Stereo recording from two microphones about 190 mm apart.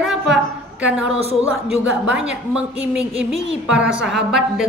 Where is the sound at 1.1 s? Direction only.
30° right (ahead or behind).